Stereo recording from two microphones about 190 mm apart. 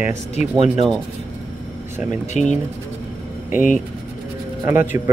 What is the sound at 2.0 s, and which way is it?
Speech, 40° left (ahead or behind).